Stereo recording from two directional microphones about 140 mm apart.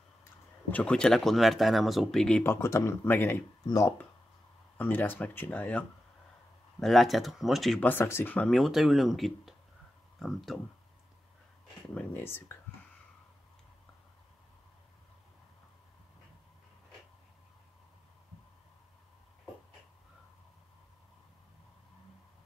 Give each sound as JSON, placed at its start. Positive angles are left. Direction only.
{"t": 0.2, "sound": "speech", "side_deg": 10}
{"t": 4.7, "sound": "speech", "side_deg": 15}
{"t": 8.5, "sound": "speech", "side_deg": 0}
{"t": 11.9, "sound": "speech", "side_deg": 10}